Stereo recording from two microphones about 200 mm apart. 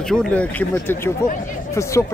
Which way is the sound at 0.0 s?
5° left (ahead or behind).